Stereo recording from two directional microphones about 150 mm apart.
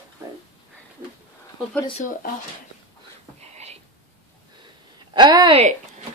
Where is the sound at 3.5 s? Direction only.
45° right (ahead or behind).